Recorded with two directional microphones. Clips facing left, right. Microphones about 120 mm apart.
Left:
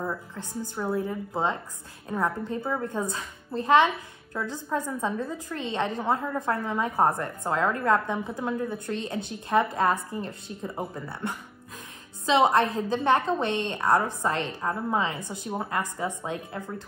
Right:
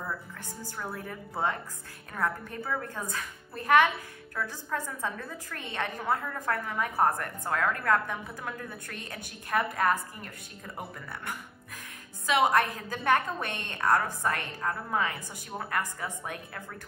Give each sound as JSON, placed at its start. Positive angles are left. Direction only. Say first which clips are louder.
{"t": 0.0, "sound": "a woman's voice", "louder": "left 5 dB", "side_deg": 20}